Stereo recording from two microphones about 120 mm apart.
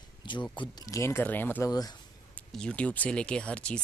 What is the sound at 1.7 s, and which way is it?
Speech, 35° left (ahead or behind).